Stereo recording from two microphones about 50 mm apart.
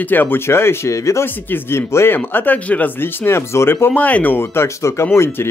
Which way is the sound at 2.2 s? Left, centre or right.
Left.